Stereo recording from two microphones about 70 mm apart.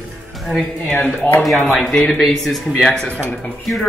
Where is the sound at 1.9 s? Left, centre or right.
Centre.